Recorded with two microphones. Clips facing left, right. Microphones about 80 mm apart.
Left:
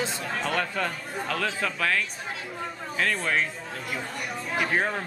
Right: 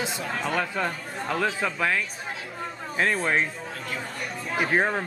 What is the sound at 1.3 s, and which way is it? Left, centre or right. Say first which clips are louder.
Speech: right 3 dB; centre.